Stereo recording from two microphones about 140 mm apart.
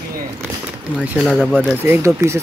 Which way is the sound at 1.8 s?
20° right (ahead or behind).